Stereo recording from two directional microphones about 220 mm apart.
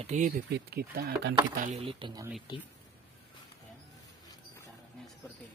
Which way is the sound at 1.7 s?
25° right (ahead or behind).